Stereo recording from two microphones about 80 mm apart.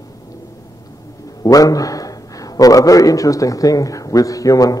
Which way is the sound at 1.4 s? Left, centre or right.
Left.